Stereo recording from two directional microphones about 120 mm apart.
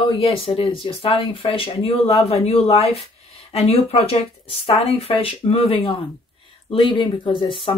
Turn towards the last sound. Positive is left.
turn(degrees=45)  # may be behind; listen again after turning